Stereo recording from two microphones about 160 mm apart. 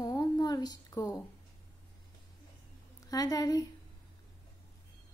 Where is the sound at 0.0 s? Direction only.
25° left (ahead or behind).